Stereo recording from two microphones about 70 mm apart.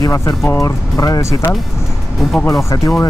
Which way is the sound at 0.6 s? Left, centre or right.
Left.